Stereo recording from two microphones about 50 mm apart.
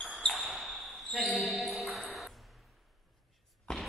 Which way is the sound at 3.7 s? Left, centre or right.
Centre.